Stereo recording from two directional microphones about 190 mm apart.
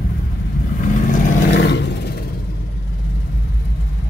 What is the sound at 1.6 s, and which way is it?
Roar, 65° left (ahead or behind).